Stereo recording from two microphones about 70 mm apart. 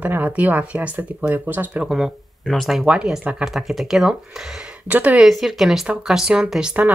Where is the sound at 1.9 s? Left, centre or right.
Centre.